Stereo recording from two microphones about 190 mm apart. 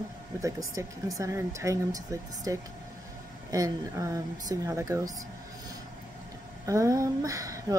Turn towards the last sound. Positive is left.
turn(degrees=-15)  # may be behind; listen again after turning